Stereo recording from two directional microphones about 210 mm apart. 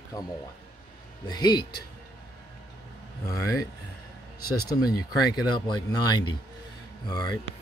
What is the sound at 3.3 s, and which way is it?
Speech, 15° left (ahead or behind).